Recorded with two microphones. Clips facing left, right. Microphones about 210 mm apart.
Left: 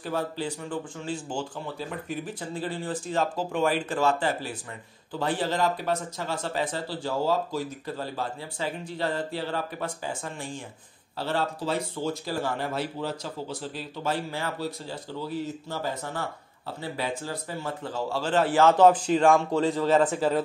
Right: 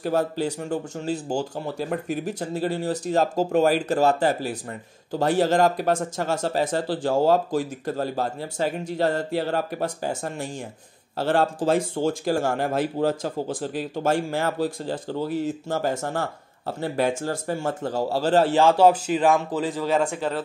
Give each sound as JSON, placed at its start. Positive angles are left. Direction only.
{"t": 0.0, "sound": "speech", "side_deg": -40}
{"t": 18.5, "sound": "a man's voice", "side_deg": -10}